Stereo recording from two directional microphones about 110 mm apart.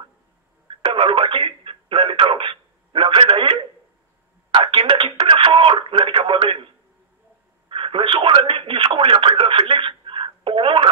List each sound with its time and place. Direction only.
0.7 s radio: 50° right (ahead or behind)
4.6 s radio: 50° right (ahead or behind)
7.7 s radio: 55° right (ahead or behind)